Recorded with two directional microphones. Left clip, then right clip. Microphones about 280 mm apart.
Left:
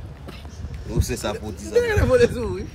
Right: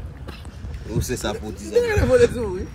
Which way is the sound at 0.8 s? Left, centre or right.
Centre.